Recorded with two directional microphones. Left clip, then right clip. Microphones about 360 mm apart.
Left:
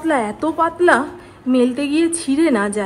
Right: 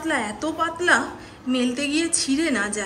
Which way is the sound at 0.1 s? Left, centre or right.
Centre.